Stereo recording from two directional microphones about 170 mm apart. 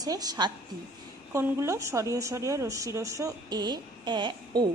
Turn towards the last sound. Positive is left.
turn(degrees=-25)  # may be behind; listen again after turning